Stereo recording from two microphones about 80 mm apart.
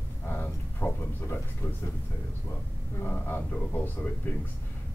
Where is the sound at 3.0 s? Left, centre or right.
Left.